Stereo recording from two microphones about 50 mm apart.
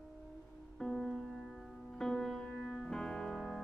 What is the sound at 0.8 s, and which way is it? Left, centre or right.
Music, centre.